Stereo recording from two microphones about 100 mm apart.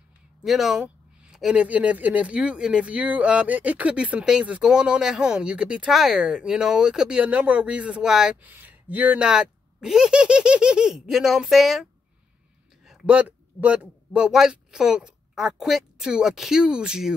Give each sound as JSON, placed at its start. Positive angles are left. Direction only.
{"t": 0.4, "sound": "speech", "side_deg": 0}
{"t": 8.4, "sound": "a man's voice", "side_deg": -20}